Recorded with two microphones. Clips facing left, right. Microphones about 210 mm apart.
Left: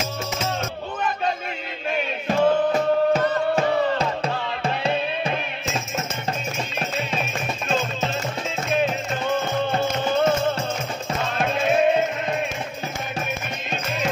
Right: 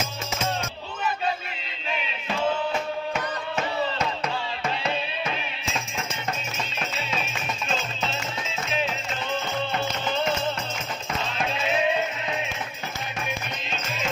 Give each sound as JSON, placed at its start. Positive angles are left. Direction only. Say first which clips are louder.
{"t": 1.9, "sound": "music", "louder": "left 6 dB", "side_deg": 50}
{"t": 3.1, "sound": "music", "louder": "left 10 dB", "side_deg": 35}
{"t": 8.1, "sound": "music", "louder": "left 5 dB", "side_deg": 50}
{"t": 11.3, "sound": "music", "louder": "left 7 dB", "side_deg": 50}